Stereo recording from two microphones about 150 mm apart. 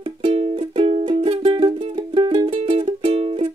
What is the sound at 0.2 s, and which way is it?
Music, 40° right (ahead or behind).